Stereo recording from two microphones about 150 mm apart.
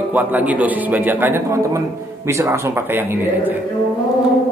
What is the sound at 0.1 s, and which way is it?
A man's voice, 10° right (ahead or behind).